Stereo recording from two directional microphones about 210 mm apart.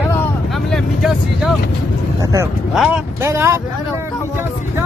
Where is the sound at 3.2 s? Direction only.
15° right (ahead or behind).